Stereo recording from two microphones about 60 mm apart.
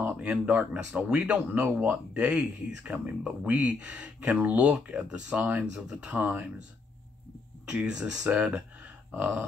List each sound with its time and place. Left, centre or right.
0.0 s speech: right
7.9 s speech: centre
8.3 s speech: right
9.1 s speech: right